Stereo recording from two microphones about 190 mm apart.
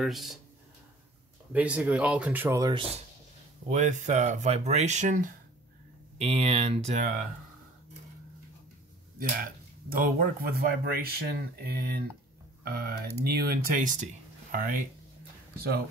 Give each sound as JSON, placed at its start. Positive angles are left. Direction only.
{"t": 0.0, "sound": "speech", "side_deg": 0}
{"t": 1.5, "sound": "speech", "side_deg": -10}
{"t": 3.6, "sound": "speech", "side_deg": -40}
{"t": 6.1, "sound": "speech", "side_deg": -35}
{"t": 9.4, "sound": "speech", "side_deg": -50}